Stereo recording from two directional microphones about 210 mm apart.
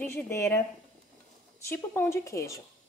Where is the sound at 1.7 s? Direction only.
10° left (ahead or behind).